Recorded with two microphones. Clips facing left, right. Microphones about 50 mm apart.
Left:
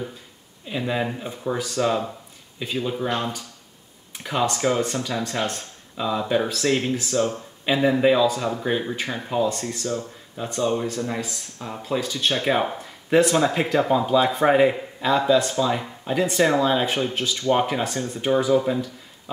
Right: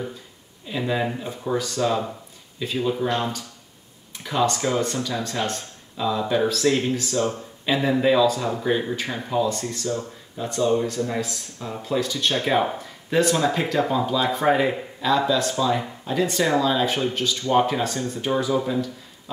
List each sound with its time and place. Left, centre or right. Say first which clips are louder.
0.7 s speech: right 1 dB; centre